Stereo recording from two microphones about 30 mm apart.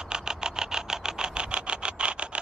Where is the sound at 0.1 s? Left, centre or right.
Right.